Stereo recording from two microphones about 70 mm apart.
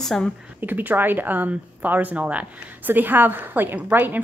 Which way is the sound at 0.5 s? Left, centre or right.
Right.